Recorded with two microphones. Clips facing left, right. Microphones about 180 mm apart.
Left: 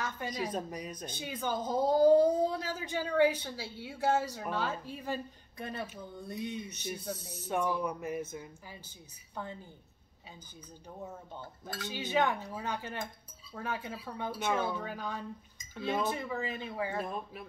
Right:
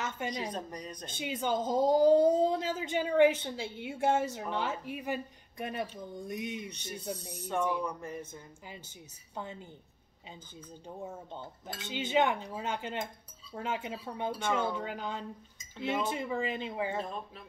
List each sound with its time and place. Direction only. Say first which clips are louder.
0.0 s a woman's voice: even; 20° right (ahead or behind)
0.5 s speech: left 2 dB; 5° left (ahead or behind)
1.1 s speech: right 4 dB; 20° right (ahead or behind)
7.8 s speech: left 3 dB; 5° left (ahead or behind)
9.3 s speech: even; 20° right (ahead or behind)
11.3 s speech: even; 20° right (ahead or behind)
17.0 s speech: left 1 dB; 10° left (ahead or behind)